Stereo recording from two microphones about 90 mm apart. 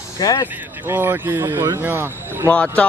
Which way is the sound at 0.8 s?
20° right (ahead or behind).